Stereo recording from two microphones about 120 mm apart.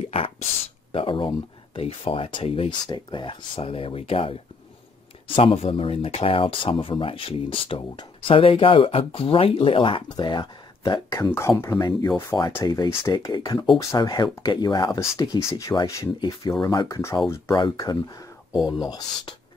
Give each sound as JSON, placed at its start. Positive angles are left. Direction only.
{"t": 0.1, "sound": "speech", "side_deg": 55}
{"t": 2.8, "sound": "speech", "side_deg": 35}
{"t": 11.3, "sound": "speech", "side_deg": 20}
{"t": 14.9, "sound": "speech", "side_deg": 25}
{"t": 17.6, "sound": "speech", "side_deg": 35}